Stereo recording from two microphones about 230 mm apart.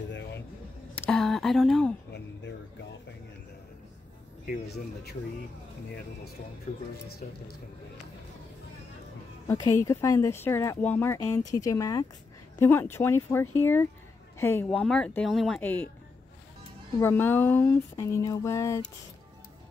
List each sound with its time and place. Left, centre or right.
0.9 s a sound: centre
4.5 s speech: left
9.5 s speech: centre
17.0 s speech: centre